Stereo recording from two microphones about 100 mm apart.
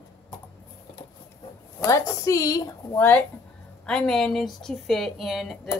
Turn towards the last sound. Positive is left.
turn(degrees=0)  # may be behind; listen again after turning